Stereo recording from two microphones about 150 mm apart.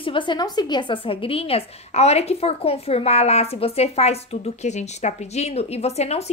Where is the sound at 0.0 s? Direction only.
35° left (ahead or behind).